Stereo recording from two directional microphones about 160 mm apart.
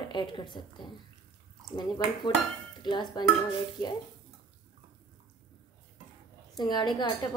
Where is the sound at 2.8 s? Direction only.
30° left (ahead or behind).